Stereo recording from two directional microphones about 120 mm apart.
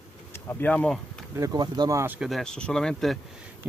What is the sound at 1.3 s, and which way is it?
Speech, 25° right (ahead or behind).